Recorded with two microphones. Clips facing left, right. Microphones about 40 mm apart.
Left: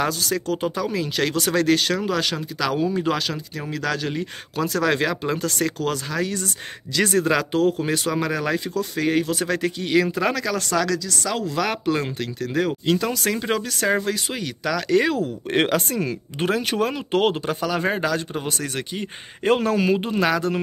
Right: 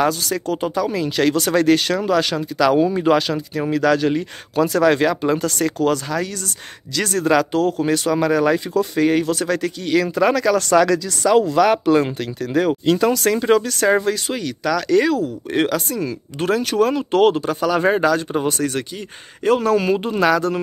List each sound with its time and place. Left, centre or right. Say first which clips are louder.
0.0 s speech: right 4 dB; centre
7.0 s speech: right 3 dB; centre
9.3 s speech: right 3 dB; centre
10.0 s speech: right 6 dB; centre
10.8 s speech: right 7 dB; right
11.4 s speech: right 8 dB; centre
15.1 s speech: right 2 dB; left
16.3 s speech: right 5 dB; centre
17.6 s speech: right 7 dB; centre
18.9 s speech: left 1 dB; left
19.7 s speech: right 3 dB; centre